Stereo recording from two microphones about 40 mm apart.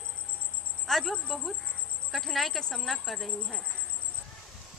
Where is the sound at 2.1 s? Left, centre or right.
Centre.